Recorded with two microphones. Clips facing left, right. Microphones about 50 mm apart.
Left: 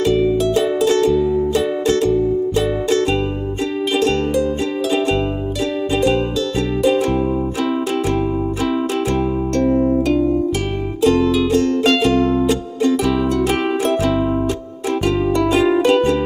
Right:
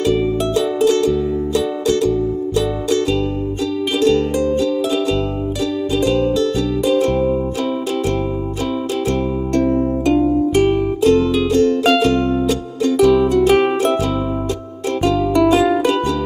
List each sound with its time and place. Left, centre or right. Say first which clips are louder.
0.8 s music: even; left
6.9 s music: right 2 dB; left
9.7 s music: left 2 dB; centre
10.0 s music: right 2 dB; centre
12.0 s music: left 1 dB; left
15.3 s music: right 3 dB; centre
15.9 s music: left 3 dB; left